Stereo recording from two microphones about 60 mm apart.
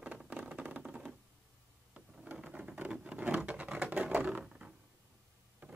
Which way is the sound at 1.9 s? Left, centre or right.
Right.